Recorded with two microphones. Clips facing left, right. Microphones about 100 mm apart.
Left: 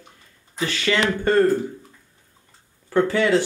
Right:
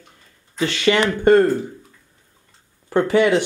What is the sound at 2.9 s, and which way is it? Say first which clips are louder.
Speech: right 3 dB; 20° right (ahead or behind).